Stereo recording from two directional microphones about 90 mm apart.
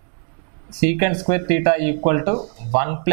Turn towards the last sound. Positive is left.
turn(degrees=-15)  # may be behind; listen again after turning